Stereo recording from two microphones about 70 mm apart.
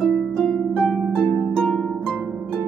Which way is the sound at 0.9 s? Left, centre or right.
Centre.